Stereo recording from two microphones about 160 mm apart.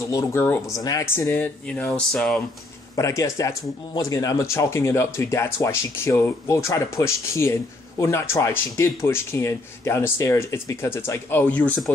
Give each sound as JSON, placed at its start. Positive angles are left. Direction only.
{"t": 0.0, "sound": "speech", "side_deg": 20}
{"t": 3.0, "sound": "speech", "side_deg": 20}